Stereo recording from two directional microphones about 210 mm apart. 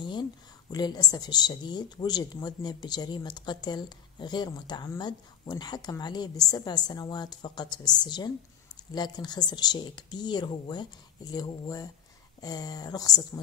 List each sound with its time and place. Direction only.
0.0 s a woman's voice: 20° left (ahead or behind)